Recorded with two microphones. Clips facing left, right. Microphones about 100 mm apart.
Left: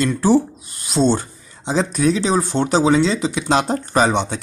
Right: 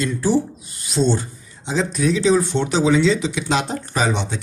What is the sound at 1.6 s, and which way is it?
Speech, 50° left (ahead or behind).